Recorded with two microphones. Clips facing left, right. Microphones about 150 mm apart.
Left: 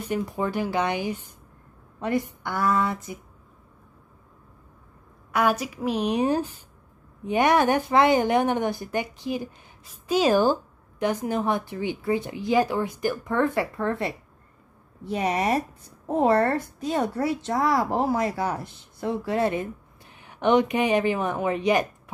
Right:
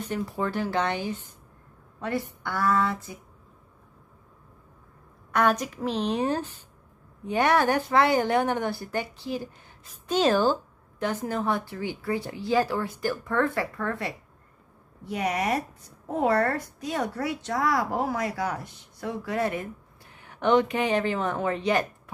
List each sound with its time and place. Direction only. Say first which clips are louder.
0.0 s a woman's voice: left 2 dB; 15° left (ahead or behind)
5.3 s a woman's voice: even; 5° left (ahead or behind)